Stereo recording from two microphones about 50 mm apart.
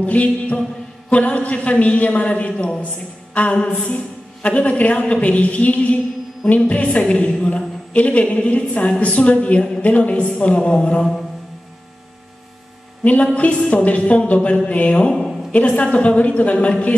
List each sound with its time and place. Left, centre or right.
0.0 s a woman's voice: left
13.0 s a woman's voice: left